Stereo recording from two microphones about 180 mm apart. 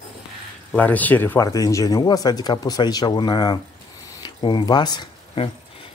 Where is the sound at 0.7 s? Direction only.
10° left (ahead or behind).